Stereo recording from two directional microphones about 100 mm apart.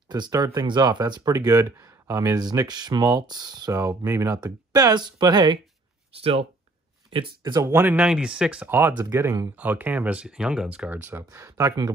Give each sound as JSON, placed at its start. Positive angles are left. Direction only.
{"t": 0.1, "sound": "speech", "side_deg": -40}
{"t": 3.8, "sound": "speech", "side_deg": -30}
{"t": 7.1, "sound": "speech", "side_deg": -55}
{"t": 7.5, "sound": "speech", "side_deg": -30}
{"t": 7.8, "sound": "speech", "side_deg": -15}
{"t": 8.6, "sound": "speech", "side_deg": -20}
{"t": 11.2, "sound": "speech", "side_deg": -30}